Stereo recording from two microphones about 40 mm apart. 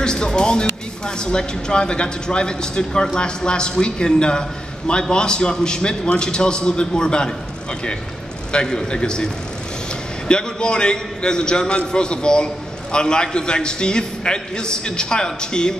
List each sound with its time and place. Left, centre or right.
0.0 s speech: centre
8.5 s speech: left